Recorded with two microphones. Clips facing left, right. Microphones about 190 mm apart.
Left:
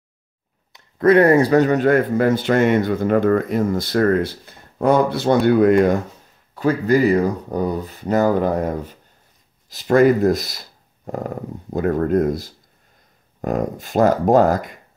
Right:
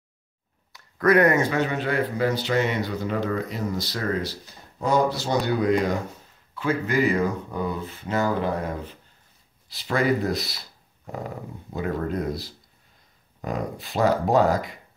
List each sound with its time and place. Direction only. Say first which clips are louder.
0.7 s speech: left 6 dB; 25° left (ahead or behind); by 5.9 s 55° left (ahead or behind)
6.5 s speech: left 7 dB; 40° left (ahead or behind)